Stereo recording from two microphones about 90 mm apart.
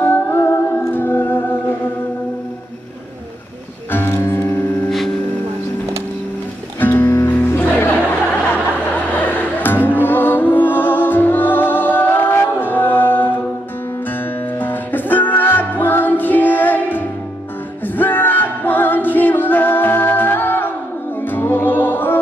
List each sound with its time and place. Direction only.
0.0 s music: 25° left (ahead or behind)
3.9 s music: 25° left (ahead or behind)
4.8 s a sound: centre (ahead or behind)
6.8 s music: 20° left (ahead or behind)
9.1 s music: 20° left (ahead or behind)
14.6 s music: 20° left (ahead or behind)
17.8 s a capella: 20° left (ahead or behind)
21.2 s music: 20° left (ahead or behind)